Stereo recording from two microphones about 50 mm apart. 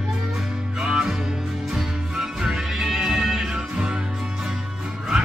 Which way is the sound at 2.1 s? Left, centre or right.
Centre.